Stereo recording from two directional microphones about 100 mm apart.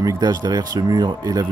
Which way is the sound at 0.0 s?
40° right (ahead or behind).